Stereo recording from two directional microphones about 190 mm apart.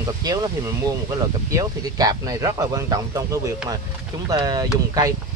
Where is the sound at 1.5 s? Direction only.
20° right (ahead or behind).